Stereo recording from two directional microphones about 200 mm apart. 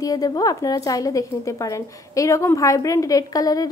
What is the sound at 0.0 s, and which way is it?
A woman's voice, 20° left (ahead or behind).